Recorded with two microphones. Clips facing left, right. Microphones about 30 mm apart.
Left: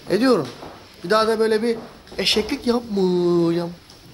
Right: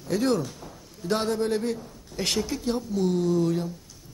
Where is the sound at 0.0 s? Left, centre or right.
Left.